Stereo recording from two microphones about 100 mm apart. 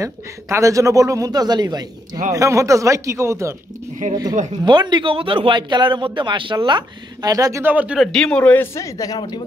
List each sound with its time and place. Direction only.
0.0 s a man's voice: 30° right (ahead or behind)
2.3 s a man's voice: 30° right (ahead or behind)
4.1 s speech: 45° right (ahead or behind)
7.6 s speech: 15° right (ahead or behind)
8.0 s speech: 5° left (ahead or behind)
8.7 s speech: 35° left (ahead or behind)